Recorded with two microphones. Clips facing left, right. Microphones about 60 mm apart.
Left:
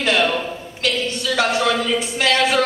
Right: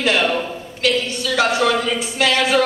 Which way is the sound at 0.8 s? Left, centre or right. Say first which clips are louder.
Right 2 dB; centre.